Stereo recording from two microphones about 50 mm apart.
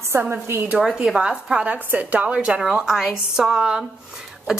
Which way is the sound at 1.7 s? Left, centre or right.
Right.